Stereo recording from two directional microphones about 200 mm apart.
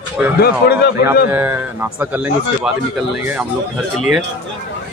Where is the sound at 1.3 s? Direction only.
10° right (ahead or behind).